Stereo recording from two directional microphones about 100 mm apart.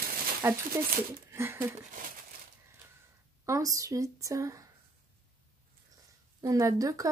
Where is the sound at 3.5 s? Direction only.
30° right (ahead or behind).